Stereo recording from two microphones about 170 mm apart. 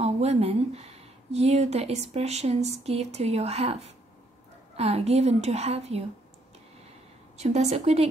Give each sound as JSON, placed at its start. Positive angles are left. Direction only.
{"t": 0.0, "sound": "speech", "side_deg": -40}
{"t": 7.3, "sound": "speech", "side_deg": -40}